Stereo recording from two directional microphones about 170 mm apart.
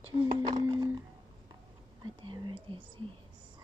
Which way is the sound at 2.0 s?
30° right (ahead or behind).